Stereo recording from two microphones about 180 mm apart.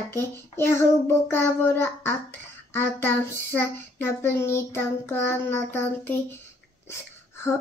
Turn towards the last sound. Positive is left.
turn(degrees=15)  # may be behind; listen again after turning